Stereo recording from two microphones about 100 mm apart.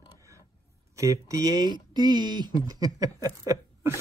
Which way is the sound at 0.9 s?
30° right (ahead or behind).